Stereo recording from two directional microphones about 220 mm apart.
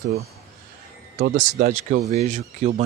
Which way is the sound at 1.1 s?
35° right (ahead or behind).